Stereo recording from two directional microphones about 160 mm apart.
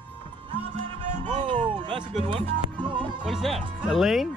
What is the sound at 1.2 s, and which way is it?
Music, 30° right (ahead or behind).